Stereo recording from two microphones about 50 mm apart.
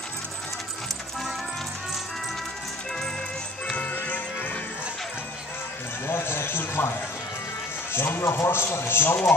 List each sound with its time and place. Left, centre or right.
4.0 s music: left
6.0 s a sound: left
7.9 s speech: left